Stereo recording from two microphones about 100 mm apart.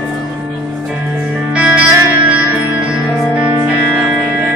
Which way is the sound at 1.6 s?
20° right (ahead or behind).